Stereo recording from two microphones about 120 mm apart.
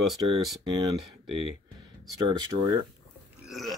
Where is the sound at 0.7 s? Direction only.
35° right (ahead or behind).